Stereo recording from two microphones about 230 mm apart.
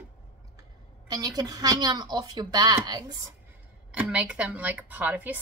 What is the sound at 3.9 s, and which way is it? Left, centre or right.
A woman's voice, centre.